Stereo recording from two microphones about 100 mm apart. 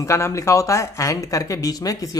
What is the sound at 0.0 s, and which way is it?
Speech, 30° left (ahead or behind).